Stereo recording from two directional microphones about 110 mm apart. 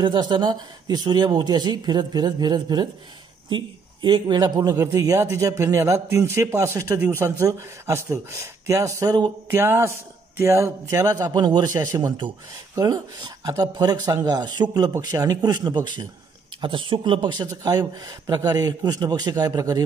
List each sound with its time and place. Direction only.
0.0 s a man's voice: 45° right (ahead or behind)
9.5 s a man's voice: 20° right (ahead or behind); by 16.1 s 40° right (ahead or behind)
16.6 s speech: 50° right (ahead or behind); by 19.8 s 35° right (ahead or behind)